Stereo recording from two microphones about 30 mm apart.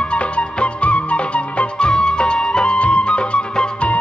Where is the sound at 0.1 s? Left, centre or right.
Left.